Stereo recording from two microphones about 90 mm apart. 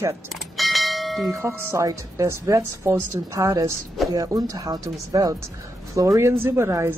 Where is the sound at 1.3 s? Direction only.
30° right (ahead or behind).